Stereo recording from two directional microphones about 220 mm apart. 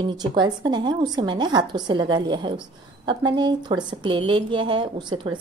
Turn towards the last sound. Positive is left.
turn(degrees=-20)  # may be behind; listen again after turning